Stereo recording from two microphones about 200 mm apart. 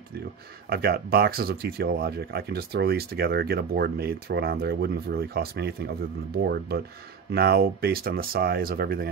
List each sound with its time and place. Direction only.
0.7 s speech: 50° right (ahead or behind)